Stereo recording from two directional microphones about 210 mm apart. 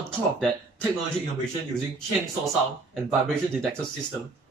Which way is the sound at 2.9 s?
5° left (ahead or behind).